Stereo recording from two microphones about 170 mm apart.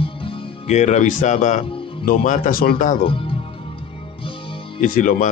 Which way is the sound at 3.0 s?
30° left (ahead or behind).